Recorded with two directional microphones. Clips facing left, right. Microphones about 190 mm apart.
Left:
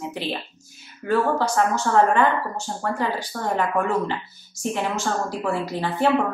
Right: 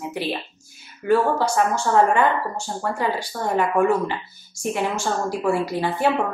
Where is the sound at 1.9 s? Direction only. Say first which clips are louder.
Right 1 dB; 15° right (ahead or behind).